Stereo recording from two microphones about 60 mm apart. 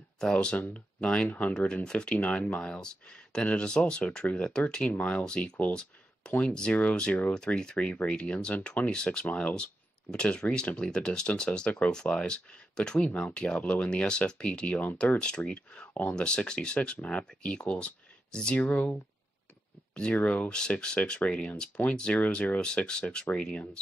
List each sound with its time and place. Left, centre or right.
0.2 s speech: centre
18.6 s speech: left
20.2 s speech: left
20.4 s speech: centre